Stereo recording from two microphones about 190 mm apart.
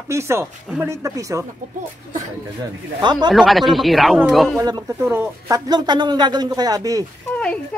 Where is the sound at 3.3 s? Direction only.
Centre (ahead or behind).